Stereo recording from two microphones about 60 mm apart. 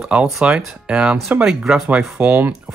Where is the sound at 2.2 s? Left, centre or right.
Right.